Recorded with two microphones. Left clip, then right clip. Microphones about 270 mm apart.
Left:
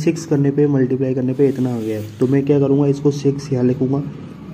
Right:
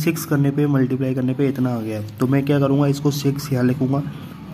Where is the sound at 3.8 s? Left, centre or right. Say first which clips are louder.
Left 2 dB; right.